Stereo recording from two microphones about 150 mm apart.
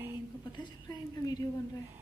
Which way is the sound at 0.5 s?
30° left (ahead or behind).